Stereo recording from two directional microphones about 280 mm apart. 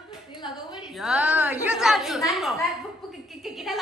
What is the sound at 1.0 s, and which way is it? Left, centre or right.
A woman's voice, centre.